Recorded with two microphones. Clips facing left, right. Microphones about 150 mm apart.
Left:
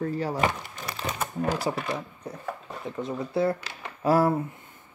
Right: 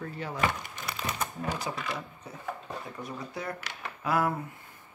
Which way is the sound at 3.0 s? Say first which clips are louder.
Left 14 dB; 30° left (ahead or behind).